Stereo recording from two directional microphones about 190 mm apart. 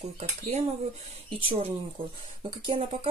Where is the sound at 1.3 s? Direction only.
30° right (ahead or behind).